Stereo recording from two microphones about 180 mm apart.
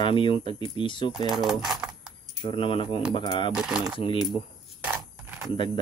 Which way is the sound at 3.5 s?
5° right (ahead or behind).